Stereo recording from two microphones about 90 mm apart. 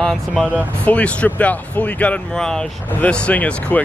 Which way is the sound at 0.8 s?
15° left (ahead or behind).